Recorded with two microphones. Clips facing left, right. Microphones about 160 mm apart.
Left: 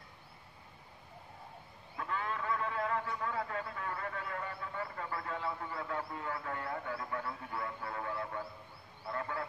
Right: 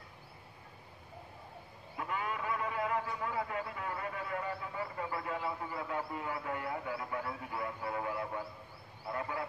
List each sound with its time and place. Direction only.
2.0 s a sound: 15° right (ahead or behind)
4.7 s radio: 15° right (ahead or behind)
9.1 s frog: 15° right (ahead or behind)